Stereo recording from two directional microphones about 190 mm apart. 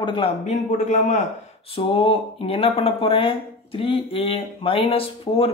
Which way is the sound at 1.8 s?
30° left (ahead or behind).